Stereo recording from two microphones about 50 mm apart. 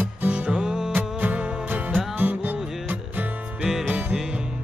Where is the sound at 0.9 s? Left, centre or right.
Right.